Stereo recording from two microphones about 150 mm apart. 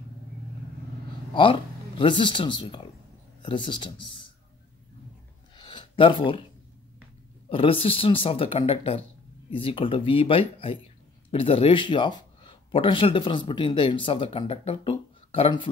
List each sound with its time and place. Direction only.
1.3 s speech: 35° left (ahead or behind)
5.6 s a sound: 30° left (ahead or behind)
7.4 s speech: 35° left (ahead or behind)